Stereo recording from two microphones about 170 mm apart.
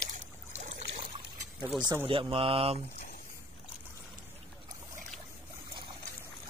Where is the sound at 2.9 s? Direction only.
60° left (ahead or behind).